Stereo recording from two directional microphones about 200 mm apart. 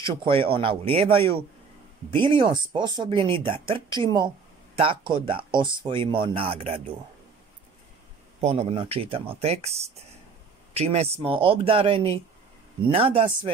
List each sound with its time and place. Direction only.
0.0 s speech: 25° right (ahead or behind)
8.4 s speech: 30° right (ahead or behind)
10.7 s speech: 30° right (ahead or behind)